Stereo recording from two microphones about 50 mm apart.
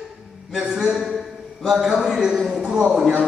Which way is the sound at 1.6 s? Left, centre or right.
Centre.